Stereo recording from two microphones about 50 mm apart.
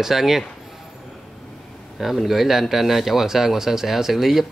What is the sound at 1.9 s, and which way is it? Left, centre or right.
Speech, centre.